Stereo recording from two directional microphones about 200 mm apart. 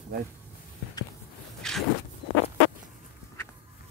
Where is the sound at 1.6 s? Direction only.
Centre (ahead or behind).